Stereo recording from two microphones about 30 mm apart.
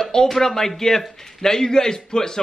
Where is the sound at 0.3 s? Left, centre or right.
Centre.